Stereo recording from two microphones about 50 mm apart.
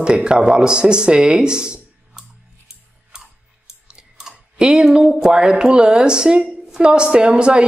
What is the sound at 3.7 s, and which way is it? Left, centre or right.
Clicking, centre.